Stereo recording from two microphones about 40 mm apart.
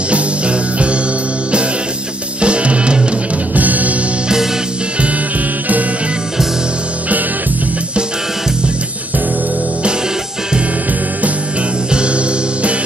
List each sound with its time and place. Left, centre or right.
0.1 s music: right
2.4 s music: right
3.5 s music: right